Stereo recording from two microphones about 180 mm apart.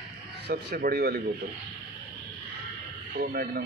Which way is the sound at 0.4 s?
65° right (ahead or behind).